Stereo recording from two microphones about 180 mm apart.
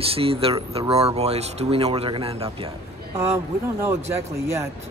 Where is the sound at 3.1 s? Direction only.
15° right (ahead or behind).